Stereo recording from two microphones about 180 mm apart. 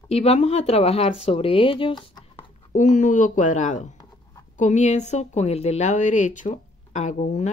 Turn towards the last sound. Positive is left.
turn(degrees=45)  # may be behind; listen again after turning